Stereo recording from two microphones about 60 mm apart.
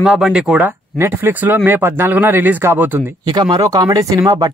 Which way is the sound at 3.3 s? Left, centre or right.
Right.